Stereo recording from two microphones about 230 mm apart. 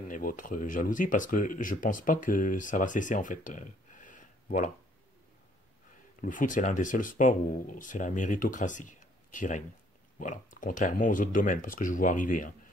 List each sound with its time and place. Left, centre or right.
0.1 s speech: left
6.2 s speech: left